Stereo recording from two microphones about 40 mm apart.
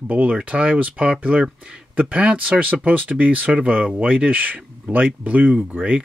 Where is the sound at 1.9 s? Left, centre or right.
Right.